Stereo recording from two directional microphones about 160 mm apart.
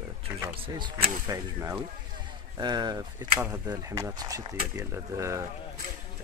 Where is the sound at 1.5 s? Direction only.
15° right (ahead or behind).